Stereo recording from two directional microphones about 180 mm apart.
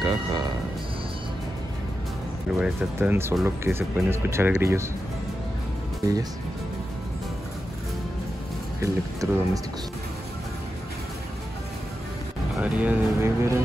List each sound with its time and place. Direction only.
0.0 s a sound: 25° right (ahead or behind)
2.6 s speech: 10° right (ahead or behind)
8.8 s speech: 15° right (ahead or behind)
12.5 s speech: 5° right (ahead or behind)